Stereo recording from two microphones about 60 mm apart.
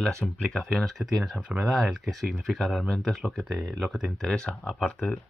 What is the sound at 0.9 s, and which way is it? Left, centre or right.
Speech, centre.